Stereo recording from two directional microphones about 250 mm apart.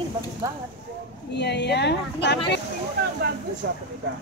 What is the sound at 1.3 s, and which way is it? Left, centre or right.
Speech, left.